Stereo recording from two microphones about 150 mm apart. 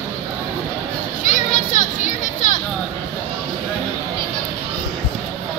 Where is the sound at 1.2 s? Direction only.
60° left (ahead or behind).